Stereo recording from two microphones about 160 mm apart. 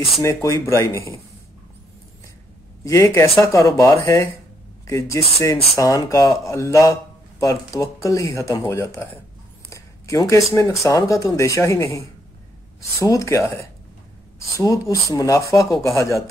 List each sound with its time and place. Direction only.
0.2 s speech: 20° left (ahead or behind)
2.8 s speech: 20° left (ahead or behind)
9.7 s a sound: 20° left (ahead or behind)
10.5 s speech: 20° left (ahead or behind)
13.0 s speech: 20° left (ahead or behind)
14.6 s speech: 20° left (ahead or behind)